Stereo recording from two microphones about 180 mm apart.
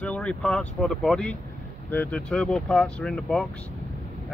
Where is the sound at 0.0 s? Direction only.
5° left (ahead or behind).